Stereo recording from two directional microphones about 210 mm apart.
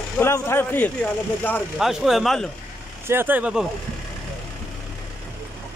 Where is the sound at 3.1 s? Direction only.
10° right (ahead or behind).